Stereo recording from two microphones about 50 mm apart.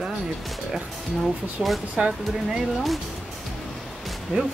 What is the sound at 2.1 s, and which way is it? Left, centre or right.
Speech, centre.